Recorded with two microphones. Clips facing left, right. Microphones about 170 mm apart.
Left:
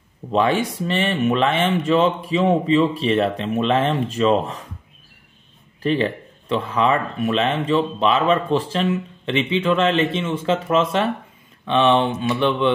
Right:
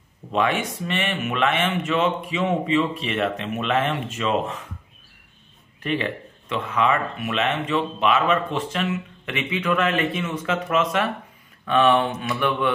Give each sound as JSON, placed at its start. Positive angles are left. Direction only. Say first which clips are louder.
{"t": 0.3, "sound": "speech", "louder": "left 4 dB", "side_deg": 30}
{"t": 5.8, "sound": "speech", "louder": "left 5 dB", "side_deg": 35}